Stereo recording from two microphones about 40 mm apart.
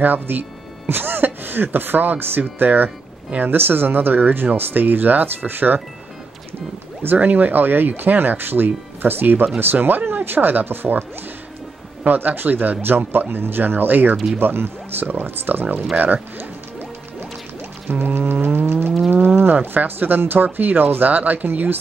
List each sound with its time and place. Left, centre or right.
0.0 s speech: right
0.8 s speech: right
7.2 s speech: right
12.0 s speech: right
14.4 s speech: right
16.0 s speech: right
17.8 s music: right
18.1 s speech: right